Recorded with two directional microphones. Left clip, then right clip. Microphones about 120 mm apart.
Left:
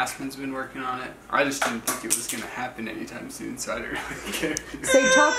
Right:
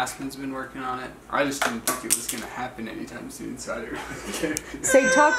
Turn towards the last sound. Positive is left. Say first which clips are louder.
# even
turn(degrees=5)  # may be behind; listen again after turning